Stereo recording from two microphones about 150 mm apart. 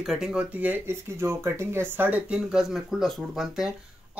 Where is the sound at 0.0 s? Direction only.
5° right (ahead or behind).